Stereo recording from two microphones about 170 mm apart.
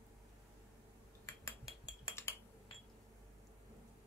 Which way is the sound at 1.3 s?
20° left (ahead or behind).